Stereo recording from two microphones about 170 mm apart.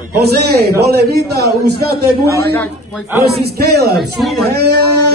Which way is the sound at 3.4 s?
70° right (ahead or behind).